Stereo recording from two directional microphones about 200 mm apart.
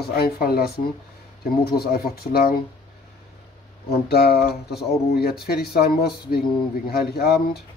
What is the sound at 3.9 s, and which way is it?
Speech, 50° left (ahead or behind).